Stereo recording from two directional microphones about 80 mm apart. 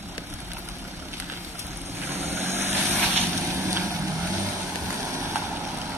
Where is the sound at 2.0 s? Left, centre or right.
Right.